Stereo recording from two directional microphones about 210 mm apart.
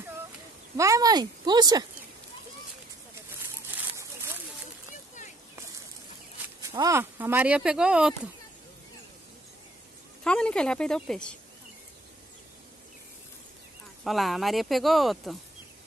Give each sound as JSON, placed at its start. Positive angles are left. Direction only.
{"t": 0.7, "sound": "speech", "side_deg": -15}
{"t": 3.7, "sound": "a sound", "side_deg": -10}
{"t": 6.7, "sound": "speech", "side_deg": -15}
{"t": 10.2, "sound": "speech", "side_deg": 5}
{"t": 14.0, "sound": "speech", "side_deg": 0}